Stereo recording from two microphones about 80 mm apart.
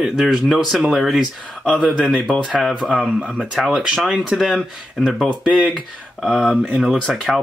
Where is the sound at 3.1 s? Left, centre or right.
Centre.